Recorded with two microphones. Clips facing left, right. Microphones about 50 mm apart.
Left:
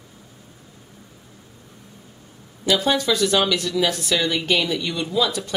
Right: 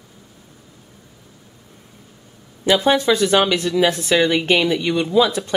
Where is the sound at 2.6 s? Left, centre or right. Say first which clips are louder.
Right 4 dB; right.